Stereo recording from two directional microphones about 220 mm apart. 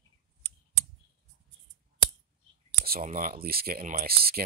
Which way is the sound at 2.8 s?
40° right (ahead or behind).